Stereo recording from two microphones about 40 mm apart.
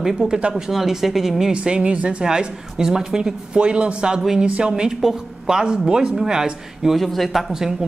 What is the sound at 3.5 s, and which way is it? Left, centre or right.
Speech, right.